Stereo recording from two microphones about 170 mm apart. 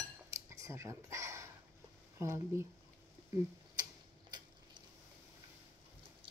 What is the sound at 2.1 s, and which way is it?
Speech, 15° right (ahead or behind).